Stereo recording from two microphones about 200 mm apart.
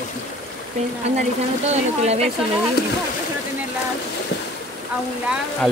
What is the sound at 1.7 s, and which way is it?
Speech, 30° right (ahead or behind).